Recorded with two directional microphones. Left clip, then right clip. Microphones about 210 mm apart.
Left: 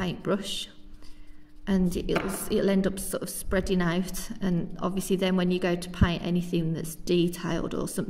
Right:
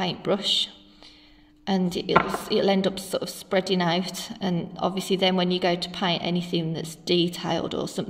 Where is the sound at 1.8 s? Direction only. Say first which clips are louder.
Right 7 dB; 30° left (ahead or behind).